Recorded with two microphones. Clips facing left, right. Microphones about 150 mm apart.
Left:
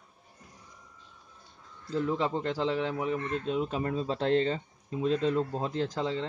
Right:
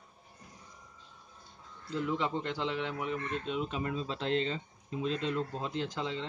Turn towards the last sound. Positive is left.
turn(degrees=40)  # may be behind; listen again after turning